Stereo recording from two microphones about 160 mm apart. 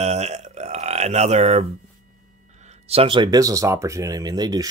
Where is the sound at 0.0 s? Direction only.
45° right (ahead or behind).